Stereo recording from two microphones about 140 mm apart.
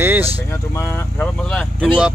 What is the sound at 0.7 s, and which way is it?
Speech, 20° left (ahead or behind).